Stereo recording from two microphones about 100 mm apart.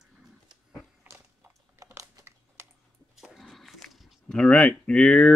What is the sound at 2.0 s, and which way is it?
Computer keyboard, 30° right (ahead or behind).